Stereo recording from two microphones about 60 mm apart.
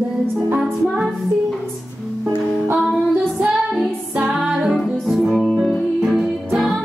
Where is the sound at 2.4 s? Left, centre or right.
Centre.